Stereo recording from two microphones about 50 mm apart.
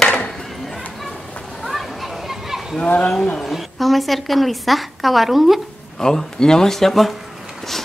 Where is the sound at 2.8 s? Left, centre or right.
Left.